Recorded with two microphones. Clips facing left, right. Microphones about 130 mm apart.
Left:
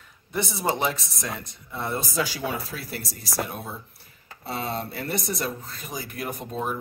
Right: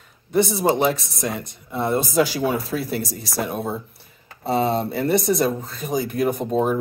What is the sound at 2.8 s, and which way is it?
Speech, 20° right (ahead or behind).